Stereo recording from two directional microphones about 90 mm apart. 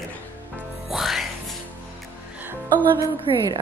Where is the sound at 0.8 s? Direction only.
Centre (ahead or behind).